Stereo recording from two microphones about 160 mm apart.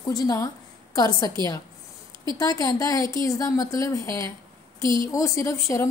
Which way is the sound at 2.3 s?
25° left (ahead or behind).